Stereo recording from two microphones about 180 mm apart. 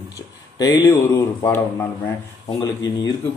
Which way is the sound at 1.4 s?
10° left (ahead or behind).